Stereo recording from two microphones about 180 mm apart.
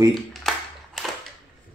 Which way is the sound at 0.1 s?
Centre (ahead or behind).